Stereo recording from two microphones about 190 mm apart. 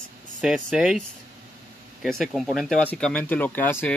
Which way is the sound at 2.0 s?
Centre (ahead or behind).